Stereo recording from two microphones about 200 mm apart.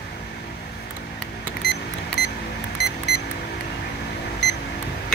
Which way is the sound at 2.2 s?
55° left (ahead or behind).